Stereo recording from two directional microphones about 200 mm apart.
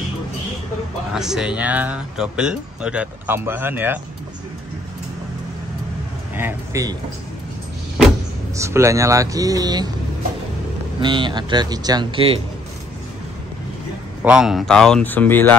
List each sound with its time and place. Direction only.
1.1 s speech: centre (ahead or behind)
6.3 s speech: 15° right (ahead or behind)
8.5 s speech: 15° right (ahead or behind)
11.0 s speech: 25° right (ahead or behind)
14.2 s speech: 5° right (ahead or behind)